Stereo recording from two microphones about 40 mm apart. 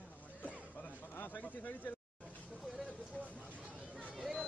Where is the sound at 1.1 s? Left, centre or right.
Left.